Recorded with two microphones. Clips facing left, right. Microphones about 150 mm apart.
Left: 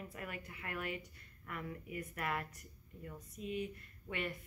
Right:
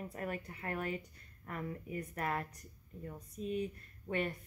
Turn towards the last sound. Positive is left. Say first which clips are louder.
# right 5 dB
turn(degrees=-40)  # may be behind; listen again after turning